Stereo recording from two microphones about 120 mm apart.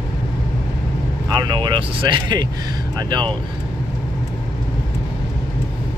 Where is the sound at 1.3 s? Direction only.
35° right (ahead or behind).